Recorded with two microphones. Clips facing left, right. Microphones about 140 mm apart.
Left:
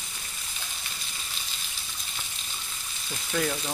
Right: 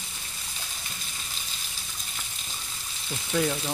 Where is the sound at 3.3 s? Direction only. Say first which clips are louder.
Right 2 dB; 20° right (ahead or behind).